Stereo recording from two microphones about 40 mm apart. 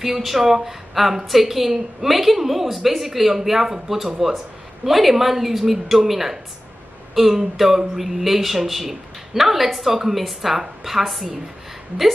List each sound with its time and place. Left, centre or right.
0.0 s a woman's voice: centre